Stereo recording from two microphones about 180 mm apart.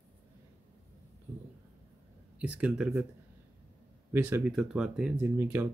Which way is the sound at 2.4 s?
5° right (ahead or behind).